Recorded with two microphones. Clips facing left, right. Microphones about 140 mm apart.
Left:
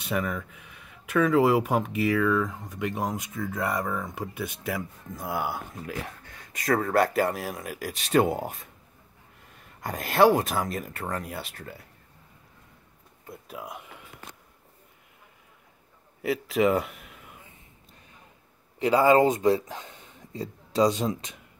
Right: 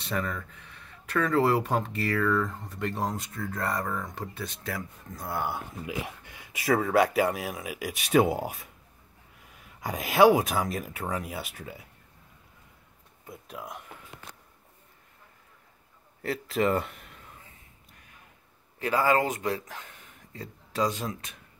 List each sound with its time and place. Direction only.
0.0 s speech: 15° left (ahead or behind)
5.9 s speech: 10° right (ahead or behind)
13.3 s speech: 5° left (ahead or behind)
16.2 s speech: 5° left (ahead or behind)
18.8 s speech: 20° left (ahead or behind)